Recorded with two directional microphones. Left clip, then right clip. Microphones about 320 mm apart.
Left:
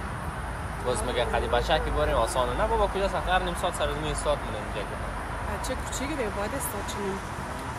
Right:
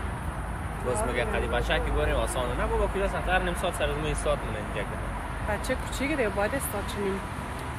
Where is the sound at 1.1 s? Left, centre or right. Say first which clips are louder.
Left 2 dB; centre.